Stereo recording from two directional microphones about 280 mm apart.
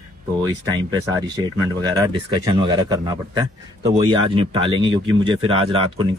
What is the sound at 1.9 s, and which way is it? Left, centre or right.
Speech, centre.